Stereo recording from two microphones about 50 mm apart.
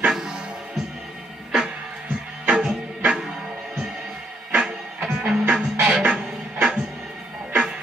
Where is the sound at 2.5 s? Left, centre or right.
Centre.